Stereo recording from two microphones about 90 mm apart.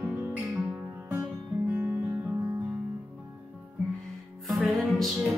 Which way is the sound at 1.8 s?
15° right (ahead or behind).